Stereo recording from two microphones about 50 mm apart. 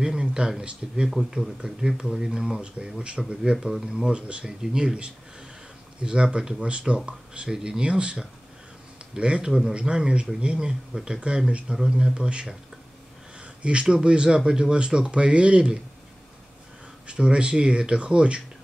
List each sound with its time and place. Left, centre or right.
0.0 s speech: centre
13.6 s speech: right
17.1 s speech: right